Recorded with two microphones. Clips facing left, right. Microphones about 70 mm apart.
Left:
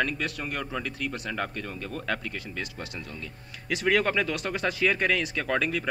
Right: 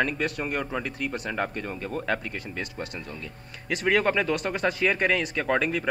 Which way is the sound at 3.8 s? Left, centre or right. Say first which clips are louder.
Right 1 dB; centre.